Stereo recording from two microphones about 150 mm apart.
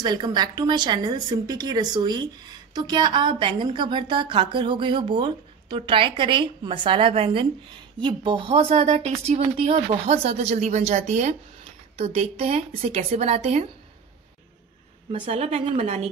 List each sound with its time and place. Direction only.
0.0 s a woman's voice: 30° right (ahead or behind); by 13.7 s 45° right (ahead or behind)
15.1 s speech: 40° right (ahead or behind)